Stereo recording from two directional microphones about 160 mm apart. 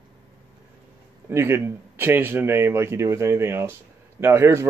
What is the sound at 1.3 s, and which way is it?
A man's voice, 15° right (ahead or behind).